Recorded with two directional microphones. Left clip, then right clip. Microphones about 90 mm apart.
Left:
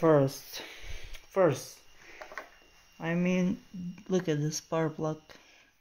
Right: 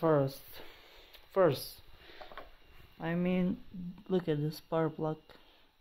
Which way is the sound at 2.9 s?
25° right (ahead or behind).